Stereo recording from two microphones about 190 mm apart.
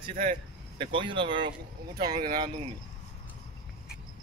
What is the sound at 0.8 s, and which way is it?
Speech, 25° right (ahead or behind).